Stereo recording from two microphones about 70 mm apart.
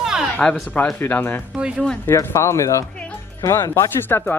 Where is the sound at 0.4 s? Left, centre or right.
Centre.